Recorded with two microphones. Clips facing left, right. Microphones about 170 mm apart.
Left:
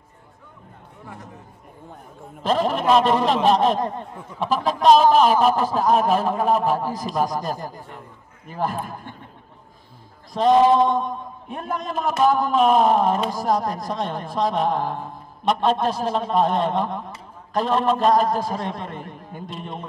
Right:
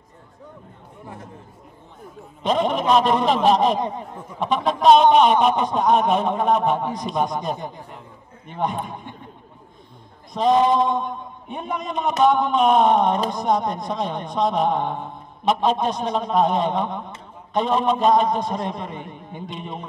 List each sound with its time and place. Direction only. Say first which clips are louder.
1.0 s speech: right 1 dB; 25° right (ahead or behind)
2.4 s a man's voice: even; centre (ahead or behind)
10.3 s a man's voice: left 2 dB; centre (ahead or behind)